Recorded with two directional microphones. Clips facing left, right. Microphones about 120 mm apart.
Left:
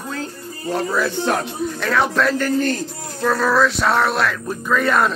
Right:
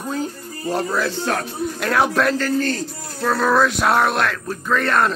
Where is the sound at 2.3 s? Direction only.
15° left (ahead or behind).